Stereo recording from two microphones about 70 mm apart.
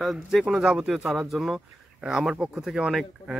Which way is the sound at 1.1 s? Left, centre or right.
Centre.